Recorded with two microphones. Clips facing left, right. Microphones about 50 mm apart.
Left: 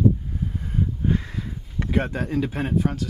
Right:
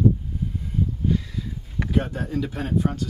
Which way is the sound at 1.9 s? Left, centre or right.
Left.